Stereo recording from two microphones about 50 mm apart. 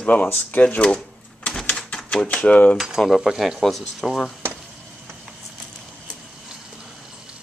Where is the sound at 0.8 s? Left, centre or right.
Centre.